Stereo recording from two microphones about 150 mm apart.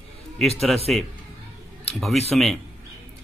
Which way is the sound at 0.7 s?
Centre (ahead or behind).